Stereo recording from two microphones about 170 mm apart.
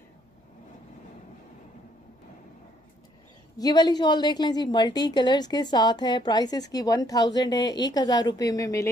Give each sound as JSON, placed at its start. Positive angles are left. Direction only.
{"t": 3.5, "sound": "a woman's voice", "side_deg": 25}